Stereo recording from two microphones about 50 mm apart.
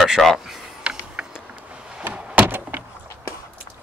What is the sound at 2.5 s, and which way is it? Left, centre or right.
Door, right.